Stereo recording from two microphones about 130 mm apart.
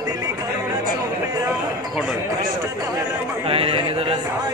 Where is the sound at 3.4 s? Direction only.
45° right (ahead or behind).